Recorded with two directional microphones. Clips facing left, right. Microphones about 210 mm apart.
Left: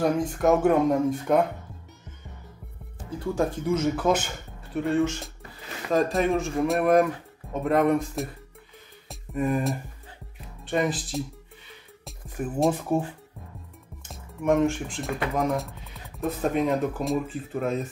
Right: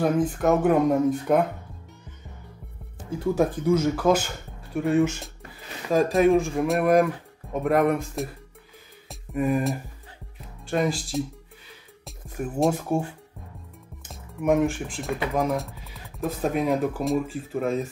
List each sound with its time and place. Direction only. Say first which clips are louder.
0.0 s speech: right 1 dB; 5° right (ahead or behind)
3.3 s speech: right 3 dB; 10° right (ahead or behind)
9.1 s music: right 2 dB; 5° right (ahead or behind)
10.7 s speech: right 1 dB; centre (ahead or behind)
14.0 s speech: right 1 dB; 5° right (ahead or behind)